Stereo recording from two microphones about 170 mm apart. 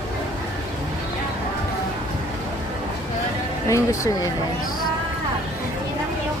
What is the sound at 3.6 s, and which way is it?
Speech, 20° left (ahead or behind).